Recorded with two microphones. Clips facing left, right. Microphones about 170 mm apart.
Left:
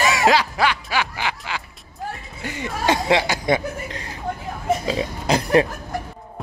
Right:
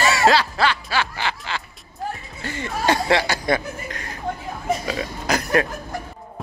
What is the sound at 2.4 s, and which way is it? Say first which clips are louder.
Speech: even; 15° left (ahead or behind).